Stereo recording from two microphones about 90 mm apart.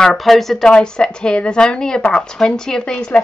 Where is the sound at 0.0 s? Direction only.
Centre (ahead or behind).